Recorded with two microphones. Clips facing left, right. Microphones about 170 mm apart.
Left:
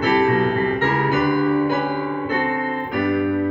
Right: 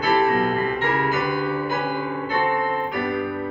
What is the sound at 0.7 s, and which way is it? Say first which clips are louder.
Music: left 3 dB; 45° left (ahead or behind).